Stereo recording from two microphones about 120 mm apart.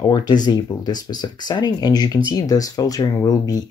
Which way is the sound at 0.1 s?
35° left (ahead or behind).